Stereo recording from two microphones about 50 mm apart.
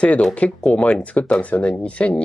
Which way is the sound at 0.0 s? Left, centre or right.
Left.